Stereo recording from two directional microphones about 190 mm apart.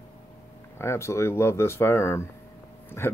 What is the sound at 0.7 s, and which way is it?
Speech, 15° left (ahead or behind).